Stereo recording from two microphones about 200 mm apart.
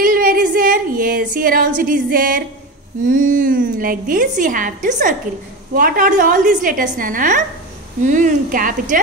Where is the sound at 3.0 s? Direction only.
40° right (ahead or behind).